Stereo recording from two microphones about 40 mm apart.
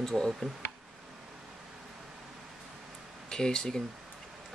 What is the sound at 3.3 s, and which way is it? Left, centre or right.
Speech, centre.